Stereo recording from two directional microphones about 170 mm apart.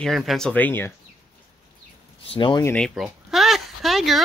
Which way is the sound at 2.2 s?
30° left (ahead or behind).